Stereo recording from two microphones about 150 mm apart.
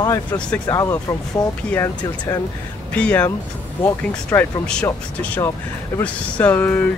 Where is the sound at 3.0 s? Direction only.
10° left (ahead or behind).